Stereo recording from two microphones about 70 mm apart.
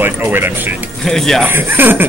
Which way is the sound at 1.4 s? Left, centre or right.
Right.